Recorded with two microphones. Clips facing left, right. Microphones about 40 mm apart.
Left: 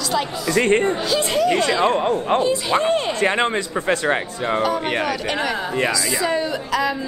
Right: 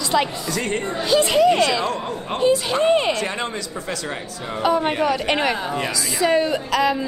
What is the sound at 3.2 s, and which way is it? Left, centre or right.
Speech, left.